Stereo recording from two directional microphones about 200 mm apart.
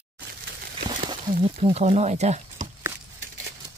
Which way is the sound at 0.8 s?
25° right (ahead or behind).